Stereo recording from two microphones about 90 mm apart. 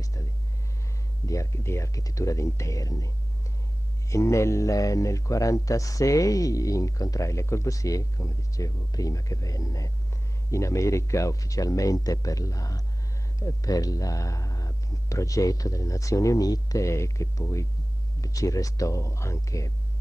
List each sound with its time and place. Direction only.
0.0 s a sound: 35° left (ahead or behind)
1.2 s a man's voice: 35° left (ahead or behind)
4.1 s a man's voice: 35° left (ahead or behind)